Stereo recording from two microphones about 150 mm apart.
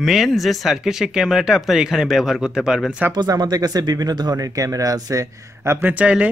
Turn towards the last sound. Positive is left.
turn(degrees=-10)  # may be behind; listen again after turning